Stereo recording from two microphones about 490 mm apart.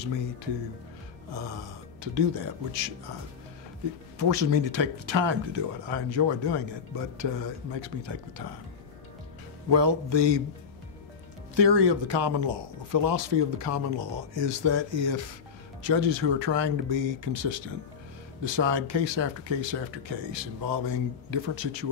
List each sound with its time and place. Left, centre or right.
0.0 s speech: right
1.3 s speech: right
4.2 s speech: right
9.7 s speech: right
11.5 s speech: right